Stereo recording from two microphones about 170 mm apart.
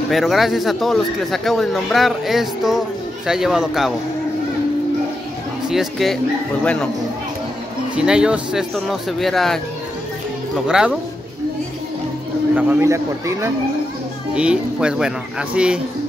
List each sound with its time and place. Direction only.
0.1 s a man's voice: centre (ahead or behind)
5.7 s a man's voice: centre (ahead or behind)
7.9 s a man's voice: 5° right (ahead or behind)
10.7 s a man's voice: 5° right (ahead or behind)
12.5 s a man's voice: 10° right (ahead or behind)
14.3 s a man's voice: 5° right (ahead or behind)